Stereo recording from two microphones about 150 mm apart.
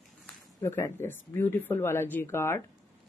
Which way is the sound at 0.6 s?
15° left (ahead or behind).